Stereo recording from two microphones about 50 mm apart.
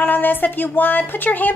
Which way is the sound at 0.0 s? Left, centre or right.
Left.